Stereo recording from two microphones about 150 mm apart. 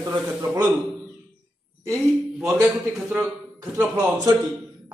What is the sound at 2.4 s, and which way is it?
A man's voice, 20° right (ahead or behind).